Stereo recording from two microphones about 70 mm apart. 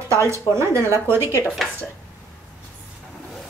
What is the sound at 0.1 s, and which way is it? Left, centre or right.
Speech, right.